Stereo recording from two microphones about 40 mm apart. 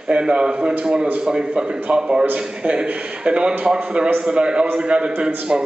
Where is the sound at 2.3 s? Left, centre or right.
Right.